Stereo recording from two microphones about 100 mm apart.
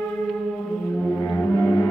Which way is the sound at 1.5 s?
30° left (ahead or behind).